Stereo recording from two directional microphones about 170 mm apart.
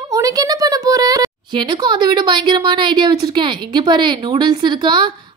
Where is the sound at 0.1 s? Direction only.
20° right (ahead or behind).